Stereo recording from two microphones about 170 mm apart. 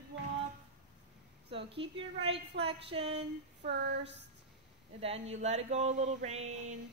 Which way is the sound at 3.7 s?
90° right.